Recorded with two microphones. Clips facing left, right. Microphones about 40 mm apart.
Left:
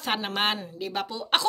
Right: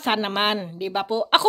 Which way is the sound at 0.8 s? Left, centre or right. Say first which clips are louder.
Right 4 dB; centre.